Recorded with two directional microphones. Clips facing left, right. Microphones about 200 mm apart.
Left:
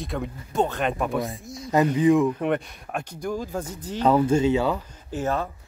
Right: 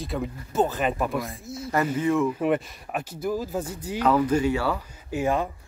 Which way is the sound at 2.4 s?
5° right (ahead or behind).